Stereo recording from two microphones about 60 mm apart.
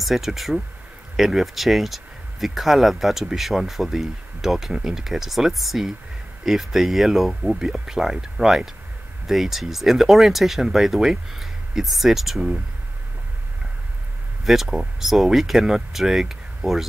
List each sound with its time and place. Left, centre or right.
0.0 s speech: centre
14.4 s speech: centre